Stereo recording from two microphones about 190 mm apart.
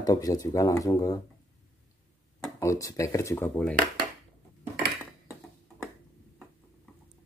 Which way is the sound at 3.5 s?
5° left (ahead or behind).